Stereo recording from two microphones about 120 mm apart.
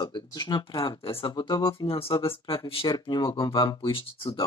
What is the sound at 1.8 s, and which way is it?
Speech, 50° left (ahead or behind).